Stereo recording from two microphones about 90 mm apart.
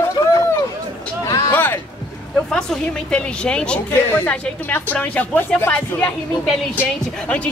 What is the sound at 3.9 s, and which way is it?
Speech, 25° left (ahead or behind).